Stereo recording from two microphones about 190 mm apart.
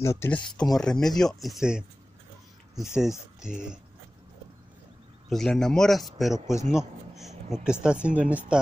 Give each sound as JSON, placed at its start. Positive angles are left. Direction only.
{"t": 0.0, "sound": "speech", "side_deg": 15}
{"t": 5.3, "sound": "speech", "side_deg": 0}
{"t": 6.3, "sound": "speech", "side_deg": 15}
{"t": 7.6, "sound": "speech", "side_deg": -5}